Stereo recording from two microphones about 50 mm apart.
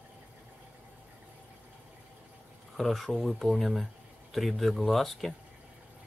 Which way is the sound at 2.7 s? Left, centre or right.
Centre.